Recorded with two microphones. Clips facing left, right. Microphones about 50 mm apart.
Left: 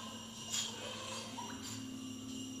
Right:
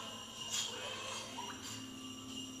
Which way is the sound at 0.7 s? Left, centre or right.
Right.